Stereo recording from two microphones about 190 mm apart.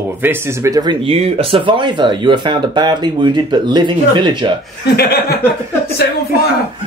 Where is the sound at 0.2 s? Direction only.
10° right (ahead or behind).